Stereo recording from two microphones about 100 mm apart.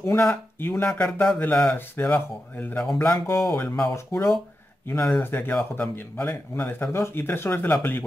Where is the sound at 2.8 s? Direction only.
5° left (ahead or behind).